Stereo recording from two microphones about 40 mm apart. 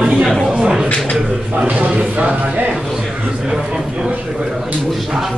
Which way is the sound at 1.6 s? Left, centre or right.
Right.